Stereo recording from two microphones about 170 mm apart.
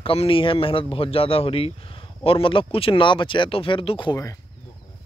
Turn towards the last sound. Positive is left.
turn(degrees=30)  # may be behind; listen again after turning